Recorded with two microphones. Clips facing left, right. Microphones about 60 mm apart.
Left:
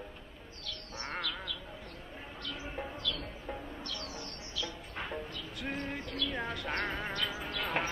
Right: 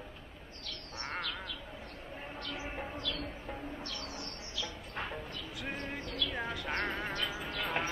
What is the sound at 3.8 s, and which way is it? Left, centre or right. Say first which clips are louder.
Bird: even; right.